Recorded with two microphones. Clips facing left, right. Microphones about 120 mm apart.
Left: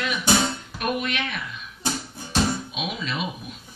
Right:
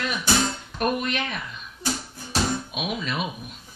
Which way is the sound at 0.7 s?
40° right (ahead or behind).